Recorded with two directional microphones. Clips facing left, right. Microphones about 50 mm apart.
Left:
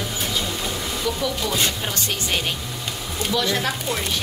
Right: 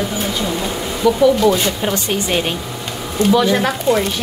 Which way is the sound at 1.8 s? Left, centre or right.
Right.